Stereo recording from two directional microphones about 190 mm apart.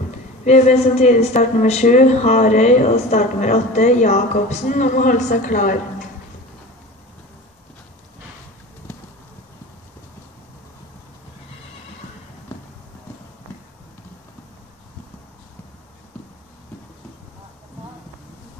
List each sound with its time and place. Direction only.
0.5 s a woman's voice: 35° left (ahead or behind)